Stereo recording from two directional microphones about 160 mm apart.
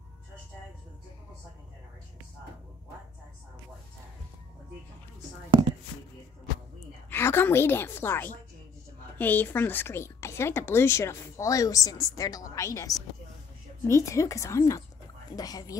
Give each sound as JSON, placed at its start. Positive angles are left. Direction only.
{"t": 7.1, "sound": "a woman's voice", "side_deg": 15}